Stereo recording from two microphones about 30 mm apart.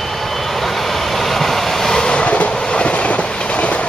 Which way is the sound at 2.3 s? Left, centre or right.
Left.